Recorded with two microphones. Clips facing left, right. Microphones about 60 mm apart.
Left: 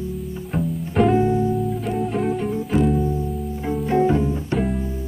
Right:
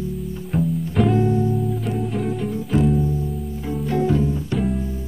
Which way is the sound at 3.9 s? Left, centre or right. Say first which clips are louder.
Left 2 dB; left.